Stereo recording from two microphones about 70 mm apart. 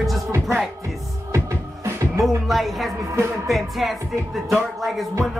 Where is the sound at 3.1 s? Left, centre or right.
Right.